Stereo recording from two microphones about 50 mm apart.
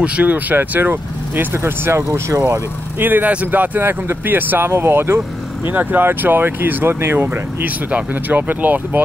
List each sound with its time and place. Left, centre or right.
0.0 s speech: right
1.6 s speech: right
3.0 s speech: right
4.6 s speech: right
5.7 s speech: right
7.6 s speech: right